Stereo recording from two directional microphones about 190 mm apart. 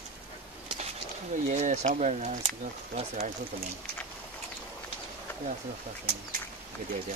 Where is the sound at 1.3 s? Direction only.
40° right (ahead or behind).